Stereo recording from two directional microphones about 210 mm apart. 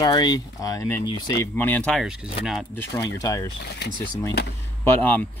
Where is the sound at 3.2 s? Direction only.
15° left (ahead or behind).